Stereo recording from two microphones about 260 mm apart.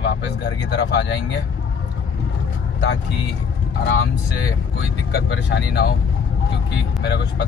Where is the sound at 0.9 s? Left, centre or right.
Left.